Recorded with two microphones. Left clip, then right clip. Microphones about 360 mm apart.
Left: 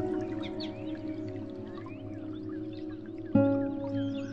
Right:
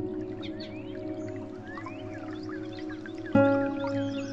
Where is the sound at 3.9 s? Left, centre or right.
Centre.